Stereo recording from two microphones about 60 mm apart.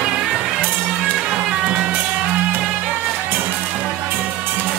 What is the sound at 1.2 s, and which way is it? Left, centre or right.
Music, centre.